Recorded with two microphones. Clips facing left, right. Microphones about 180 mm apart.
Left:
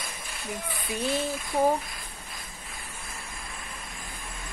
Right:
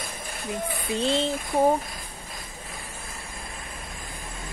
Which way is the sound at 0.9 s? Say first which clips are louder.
Right 4 dB; 25° right (ahead or behind).